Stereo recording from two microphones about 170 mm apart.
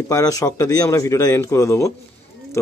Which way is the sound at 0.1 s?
20° left (ahead or behind).